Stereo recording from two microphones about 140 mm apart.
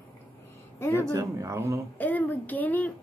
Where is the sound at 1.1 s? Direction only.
20° right (ahead or behind).